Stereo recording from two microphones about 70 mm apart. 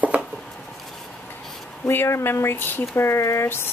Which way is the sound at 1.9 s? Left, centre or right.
Left.